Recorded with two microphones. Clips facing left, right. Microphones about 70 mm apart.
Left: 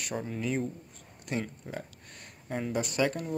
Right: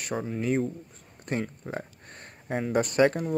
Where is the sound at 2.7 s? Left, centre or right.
Right.